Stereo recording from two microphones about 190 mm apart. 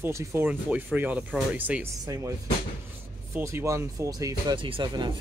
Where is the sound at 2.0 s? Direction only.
20° right (ahead or behind).